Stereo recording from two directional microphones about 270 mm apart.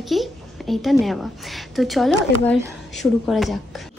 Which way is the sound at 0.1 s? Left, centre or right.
Centre.